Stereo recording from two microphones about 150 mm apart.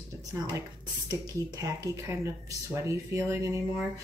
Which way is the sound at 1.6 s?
20° right (ahead or behind).